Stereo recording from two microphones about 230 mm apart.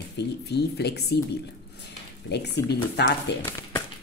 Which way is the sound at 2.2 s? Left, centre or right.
Left.